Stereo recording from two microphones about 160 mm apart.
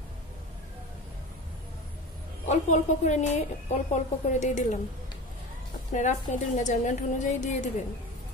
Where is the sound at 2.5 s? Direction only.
45° left (ahead or behind).